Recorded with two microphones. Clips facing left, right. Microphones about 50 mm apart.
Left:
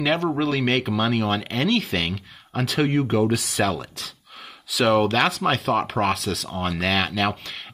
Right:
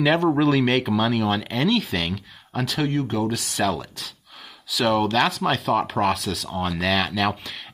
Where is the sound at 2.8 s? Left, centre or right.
Left.